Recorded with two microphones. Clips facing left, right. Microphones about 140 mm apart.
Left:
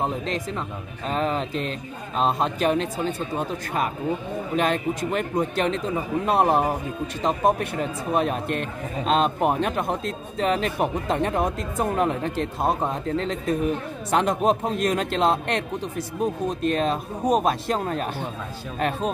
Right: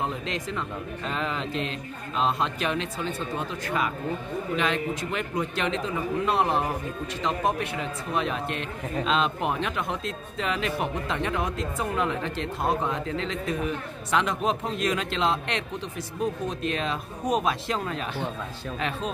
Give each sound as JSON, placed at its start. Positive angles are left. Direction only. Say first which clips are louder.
{"t": 0.0, "sound": "speech", "louder": "left 4 dB", "side_deg": 40}